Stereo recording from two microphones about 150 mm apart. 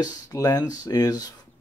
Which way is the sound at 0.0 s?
25° left (ahead or behind).